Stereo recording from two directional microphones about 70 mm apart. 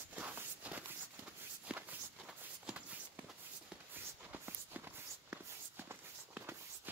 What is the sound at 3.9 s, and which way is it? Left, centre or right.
Walk, right.